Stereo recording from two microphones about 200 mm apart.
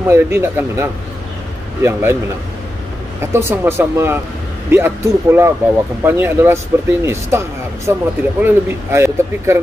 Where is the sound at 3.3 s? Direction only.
10° right (ahead or behind).